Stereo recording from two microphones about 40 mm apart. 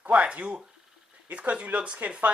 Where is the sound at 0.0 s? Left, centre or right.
Right.